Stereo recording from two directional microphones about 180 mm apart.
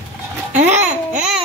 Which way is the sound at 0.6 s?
40° right (ahead or behind).